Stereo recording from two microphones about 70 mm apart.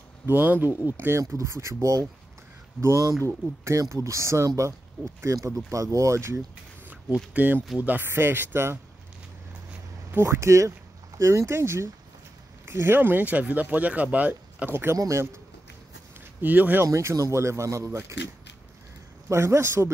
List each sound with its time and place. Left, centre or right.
0.3 s speech: right
1.2 s speech: right
3.3 s speech: right
7.3 s speech: right
10.2 s speech: right
14.7 s speech: right
16.3 s speech: right
16.8 s speech: right
19.2 s speech: right